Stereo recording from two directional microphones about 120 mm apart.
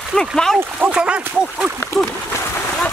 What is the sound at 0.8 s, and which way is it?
Speech, 10° right (ahead or behind).